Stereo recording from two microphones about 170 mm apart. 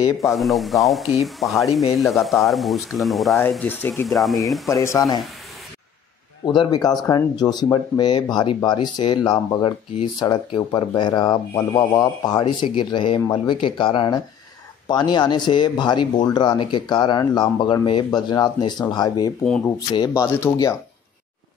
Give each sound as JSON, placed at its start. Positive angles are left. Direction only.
{"t": 0.2, "sound": "speech", "side_deg": 0}
{"t": 3.4, "sound": "speech", "side_deg": 10}
{"t": 4.6, "sound": "speech", "side_deg": 20}
{"t": 6.4, "sound": "speech", "side_deg": 25}
{"t": 19.4, "sound": "speech", "side_deg": 5}
{"t": 19.9, "sound": "speech", "side_deg": 20}